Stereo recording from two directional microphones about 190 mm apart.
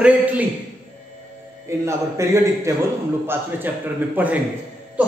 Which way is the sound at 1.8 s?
15° right (ahead or behind).